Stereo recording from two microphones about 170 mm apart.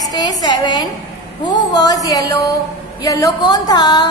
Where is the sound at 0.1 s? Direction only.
25° left (ahead or behind).